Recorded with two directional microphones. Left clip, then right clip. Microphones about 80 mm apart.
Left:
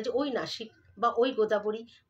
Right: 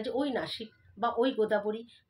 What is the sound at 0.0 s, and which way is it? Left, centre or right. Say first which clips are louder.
A woman's voice: left 2 dB; left.